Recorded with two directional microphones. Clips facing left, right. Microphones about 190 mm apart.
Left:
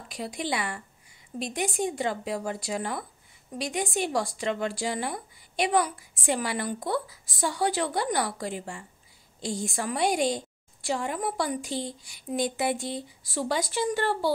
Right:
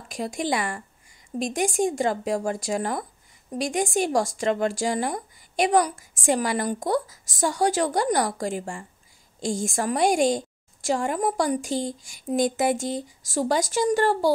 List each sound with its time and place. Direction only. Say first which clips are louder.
0.1 s a woman's voice: right 5 dB; 45° right (ahead or behind)